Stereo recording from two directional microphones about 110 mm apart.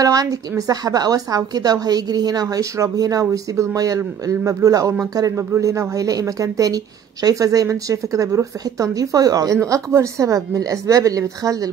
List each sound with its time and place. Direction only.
0.0 s a woman's voice: 30° right (ahead or behind)